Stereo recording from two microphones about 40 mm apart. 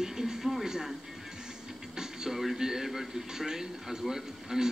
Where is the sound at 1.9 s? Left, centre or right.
Centre.